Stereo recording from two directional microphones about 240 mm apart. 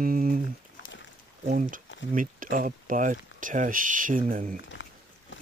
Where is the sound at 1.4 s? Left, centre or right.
Right.